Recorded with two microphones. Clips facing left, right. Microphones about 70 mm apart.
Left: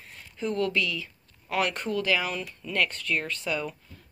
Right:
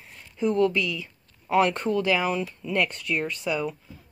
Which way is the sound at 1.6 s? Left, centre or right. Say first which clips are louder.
Right 5 dB; right.